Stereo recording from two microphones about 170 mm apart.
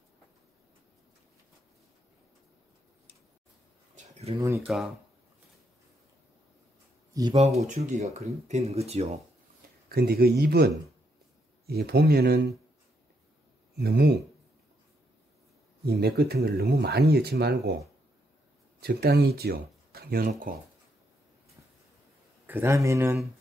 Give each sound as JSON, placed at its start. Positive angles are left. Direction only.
{"t": 3.9, "sound": "bird", "side_deg": -40}
{"t": 4.6, "sound": "speech", "side_deg": -5}
{"t": 7.3, "sound": "speech", "side_deg": -40}
{"t": 9.8, "sound": "speech", "side_deg": -65}
{"t": 13.7, "sound": "speech", "side_deg": -70}
{"t": 15.8, "sound": "speech", "side_deg": -70}
{"t": 18.8, "sound": "speech", "side_deg": -65}
{"t": 22.5, "sound": "speech", "side_deg": -15}